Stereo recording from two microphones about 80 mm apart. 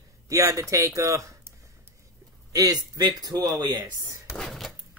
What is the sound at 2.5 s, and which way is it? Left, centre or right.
A man's voice, right.